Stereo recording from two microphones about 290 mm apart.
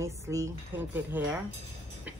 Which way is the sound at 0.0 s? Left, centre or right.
Centre.